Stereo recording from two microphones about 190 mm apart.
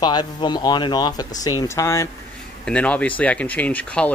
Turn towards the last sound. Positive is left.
turn(degrees=5)  # may be behind; listen again after turning